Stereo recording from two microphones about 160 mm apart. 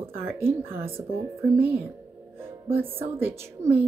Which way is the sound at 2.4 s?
15° right (ahead or behind).